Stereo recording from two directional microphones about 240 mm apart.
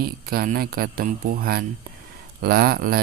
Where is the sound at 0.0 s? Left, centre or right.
Right.